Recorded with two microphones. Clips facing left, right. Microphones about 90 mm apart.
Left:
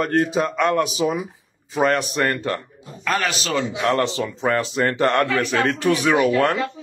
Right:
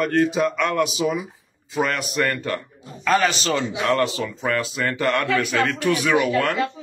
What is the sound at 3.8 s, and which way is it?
A man's voice, 35° left (ahead or behind).